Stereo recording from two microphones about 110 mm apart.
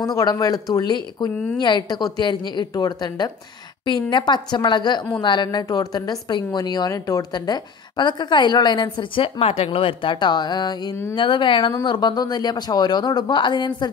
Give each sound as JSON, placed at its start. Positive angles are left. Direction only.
{"t": 0.0, "sound": "a woman's voice", "side_deg": 35}